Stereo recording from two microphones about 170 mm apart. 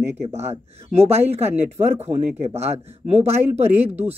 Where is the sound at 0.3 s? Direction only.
40° right (ahead or behind).